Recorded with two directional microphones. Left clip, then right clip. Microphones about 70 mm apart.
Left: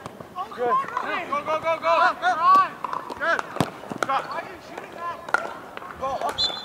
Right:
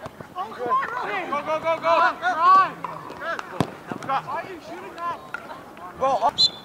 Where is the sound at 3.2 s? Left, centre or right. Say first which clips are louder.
Left 6 dB; left.